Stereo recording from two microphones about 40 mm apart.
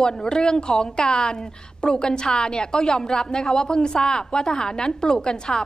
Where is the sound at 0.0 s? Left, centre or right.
Centre.